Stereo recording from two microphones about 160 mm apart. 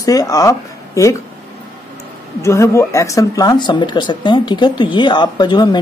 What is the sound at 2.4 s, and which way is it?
Speech, 20° left (ahead or behind).